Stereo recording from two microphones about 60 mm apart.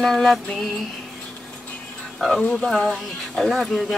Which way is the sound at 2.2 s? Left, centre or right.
Centre.